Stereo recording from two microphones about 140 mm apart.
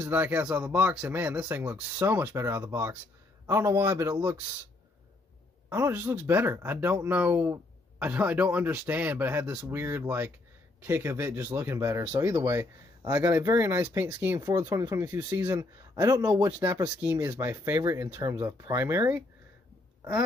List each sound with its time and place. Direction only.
0.0 s speech: 15° right (ahead or behind)
5.7 s speech: 15° right (ahead or behind)